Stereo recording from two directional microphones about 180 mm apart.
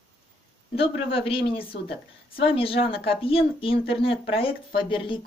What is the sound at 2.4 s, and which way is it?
A woman's voice, 30° left (ahead or behind).